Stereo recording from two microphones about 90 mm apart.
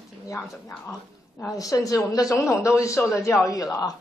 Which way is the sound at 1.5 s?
40° left (ahead or behind).